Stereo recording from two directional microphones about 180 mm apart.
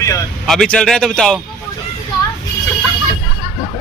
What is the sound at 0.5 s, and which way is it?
Speech, 5° left (ahead or behind).